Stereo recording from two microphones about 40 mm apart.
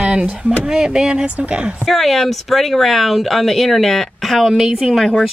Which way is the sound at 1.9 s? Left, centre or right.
Centre.